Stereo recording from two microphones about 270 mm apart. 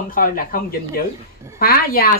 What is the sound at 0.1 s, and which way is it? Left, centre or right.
A woman's voice, left.